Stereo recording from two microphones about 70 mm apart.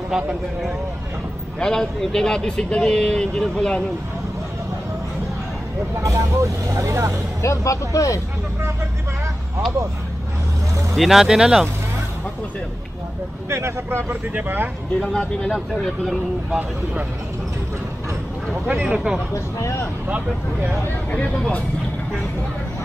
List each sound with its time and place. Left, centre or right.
0.1 s speech: centre
1.6 s speech: centre
6.0 s speech: right
7.4 s speech: left
11.0 s speech: centre
13.5 s speech: right
14.3 s speech: right
15.0 s speech: centre
15.5 s speech: centre
18.7 s speech: centre
19.3 s speech: left
20.1 s speech: right
21.1 s speech: left